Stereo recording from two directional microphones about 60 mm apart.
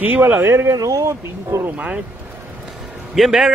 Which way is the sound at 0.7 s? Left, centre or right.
Right.